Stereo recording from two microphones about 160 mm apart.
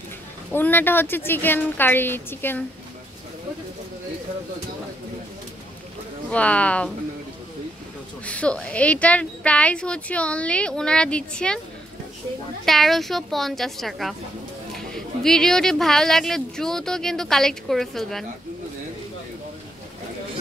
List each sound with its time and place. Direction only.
0.5 s speech: 10° left (ahead or behind)
6.3 s speech: 10° left (ahead or behind)
8.3 s speech: 5° left (ahead or behind)
12.6 s speech: centre (ahead or behind)